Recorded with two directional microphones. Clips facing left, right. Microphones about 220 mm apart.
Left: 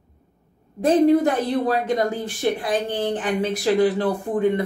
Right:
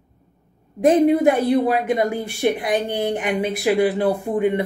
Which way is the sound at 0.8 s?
10° right (ahead or behind).